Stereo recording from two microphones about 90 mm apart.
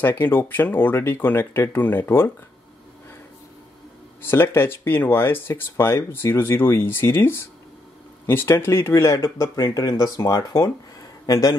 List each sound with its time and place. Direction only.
0.0 s speech: 25° left (ahead or behind)
4.2 s speech: 25° left (ahead or behind)